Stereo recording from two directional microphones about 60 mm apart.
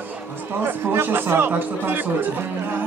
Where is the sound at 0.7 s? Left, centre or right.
Right.